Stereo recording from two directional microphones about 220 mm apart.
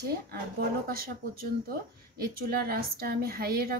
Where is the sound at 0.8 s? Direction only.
40° right (ahead or behind).